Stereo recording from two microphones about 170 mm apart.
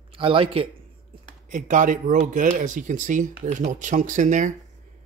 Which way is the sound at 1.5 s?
50° right (ahead or behind).